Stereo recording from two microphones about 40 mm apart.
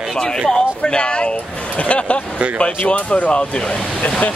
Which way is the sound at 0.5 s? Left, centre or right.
Left.